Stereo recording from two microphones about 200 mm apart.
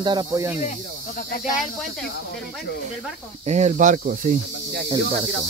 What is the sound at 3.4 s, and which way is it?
Speech, 35° right (ahead or behind).